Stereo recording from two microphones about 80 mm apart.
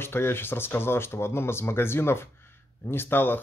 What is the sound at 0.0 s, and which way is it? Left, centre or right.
Speech, left.